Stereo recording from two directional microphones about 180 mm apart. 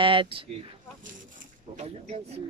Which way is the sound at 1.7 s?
40° right (ahead or behind).